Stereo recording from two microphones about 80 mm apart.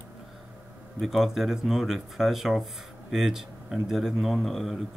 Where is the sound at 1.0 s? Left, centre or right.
Centre.